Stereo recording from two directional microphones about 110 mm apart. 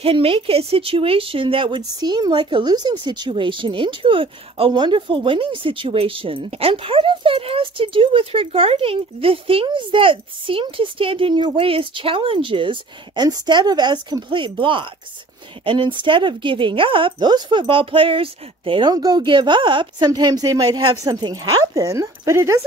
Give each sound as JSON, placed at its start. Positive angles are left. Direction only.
{"t": 0.0, "sound": "speech", "side_deg": -60}
{"t": 1.8, "sound": "speech", "side_deg": -40}